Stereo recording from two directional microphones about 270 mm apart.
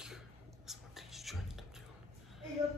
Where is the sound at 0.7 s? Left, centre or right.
Centre.